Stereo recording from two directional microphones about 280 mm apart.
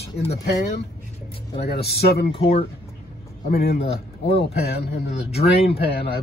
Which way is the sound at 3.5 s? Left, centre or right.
Left.